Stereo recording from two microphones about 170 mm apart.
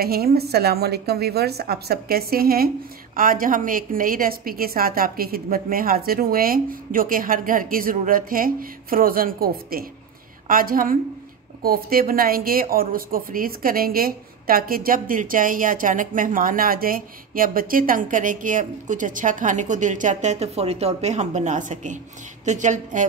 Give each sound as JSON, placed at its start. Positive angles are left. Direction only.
{"t": 0.0, "sound": "a woman's voice", "side_deg": -65}